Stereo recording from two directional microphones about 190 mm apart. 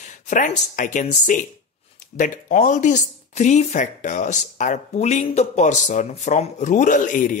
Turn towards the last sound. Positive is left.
turn(degrees=40)  # may be behind; listen again after turning